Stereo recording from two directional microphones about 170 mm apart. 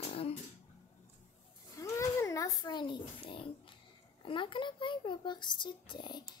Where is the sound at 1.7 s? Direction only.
15° left (ahead or behind).